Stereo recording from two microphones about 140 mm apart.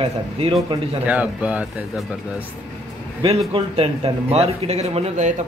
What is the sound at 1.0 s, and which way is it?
Speech, 10° right (ahead or behind).